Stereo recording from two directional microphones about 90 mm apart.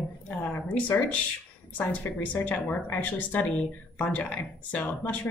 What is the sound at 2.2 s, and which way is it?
A woman's voice, 15° left (ahead or behind).